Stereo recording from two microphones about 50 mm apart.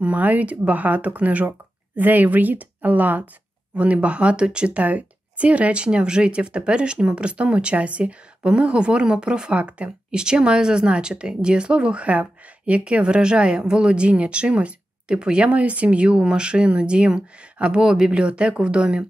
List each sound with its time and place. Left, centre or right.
0.0 s speech: right